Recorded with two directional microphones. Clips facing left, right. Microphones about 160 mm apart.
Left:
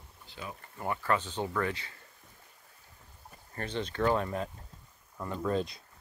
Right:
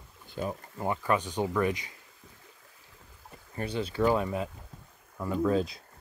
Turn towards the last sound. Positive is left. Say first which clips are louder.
# right 5 dB
turn(degrees=0)  # may be behind; listen again after turning